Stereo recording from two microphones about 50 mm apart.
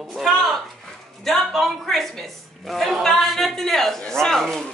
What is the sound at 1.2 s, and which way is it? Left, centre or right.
A woman's voice, centre.